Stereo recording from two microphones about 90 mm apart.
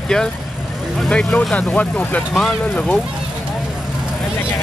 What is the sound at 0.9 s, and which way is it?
Speech, 10° left (ahead or behind).